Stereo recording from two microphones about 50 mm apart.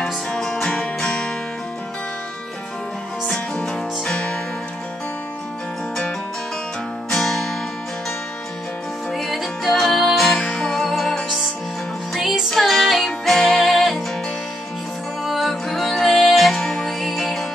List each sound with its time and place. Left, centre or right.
0.0 s music: centre
3.3 s music: centre
7.1 s music: centre
9.1 s music: centre
10.4 s music: centre
10.8 s music: centre
15.2 s music: centre